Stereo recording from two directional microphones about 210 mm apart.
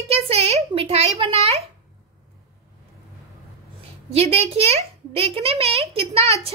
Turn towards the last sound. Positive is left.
turn(degrees=-30)  # may be behind; listen again after turning